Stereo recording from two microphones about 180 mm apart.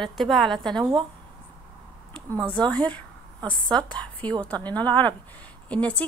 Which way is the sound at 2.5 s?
5° left (ahead or behind).